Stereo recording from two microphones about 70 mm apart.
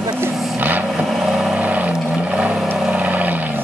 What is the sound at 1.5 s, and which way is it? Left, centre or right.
Vehicle, right.